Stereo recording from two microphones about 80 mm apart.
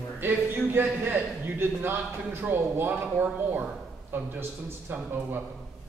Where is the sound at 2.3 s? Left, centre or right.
Right.